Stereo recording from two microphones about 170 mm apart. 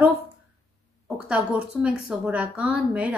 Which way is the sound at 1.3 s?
5° right (ahead or behind).